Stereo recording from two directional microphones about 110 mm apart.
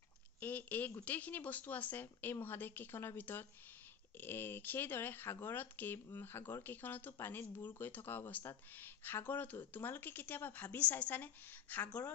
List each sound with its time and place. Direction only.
0.4 s speech: 15° left (ahead or behind)